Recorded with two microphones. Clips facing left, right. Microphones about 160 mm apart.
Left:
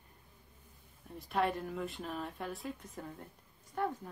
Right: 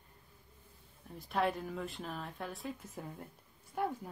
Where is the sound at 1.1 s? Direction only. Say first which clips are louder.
Even; centre (ahead or behind).